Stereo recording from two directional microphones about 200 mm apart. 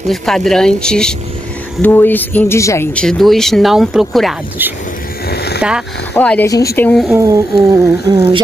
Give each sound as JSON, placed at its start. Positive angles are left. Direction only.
{"t": 0.1, "sound": "speech", "side_deg": 0}
{"t": 5.3, "sound": "a sound", "side_deg": 55}
{"t": 5.6, "sound": "speech", "side_deg": -5}
{"t": 6.1, "sound": "speech", "side_deg": 10}
{"t": 7.1, "sound": "speech", "side_deg": -15}